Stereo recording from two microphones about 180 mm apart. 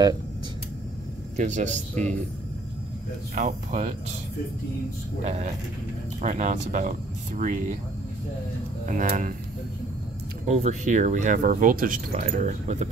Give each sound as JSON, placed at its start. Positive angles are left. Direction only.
{"t": 1.3, "sound": "a man's voice", "side_deg": -40}
{"t": 3.3, "sound": "speech", "side_deg": -40}
{"t": 5.2, "sound": "a man's voice", "side_deg": -40}
{"t": 8.8, "sound": "speech", "side_deg": -45}
{"t": 10.4, "sound": "a man's voice", "side_deg": -40}